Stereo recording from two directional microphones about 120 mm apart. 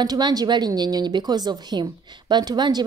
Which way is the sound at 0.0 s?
35° right (ahead or behind).